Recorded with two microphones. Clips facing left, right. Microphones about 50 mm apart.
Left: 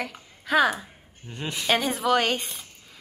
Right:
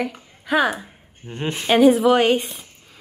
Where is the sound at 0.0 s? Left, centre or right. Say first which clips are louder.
Right 7 dB; centre.